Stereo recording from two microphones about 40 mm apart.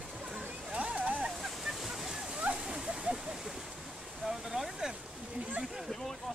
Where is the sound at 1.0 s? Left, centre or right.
Right.